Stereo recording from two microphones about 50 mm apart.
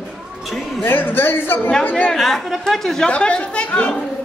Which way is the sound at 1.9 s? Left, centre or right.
Left.